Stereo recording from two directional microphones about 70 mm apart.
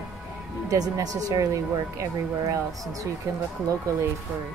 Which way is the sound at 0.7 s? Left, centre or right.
Right.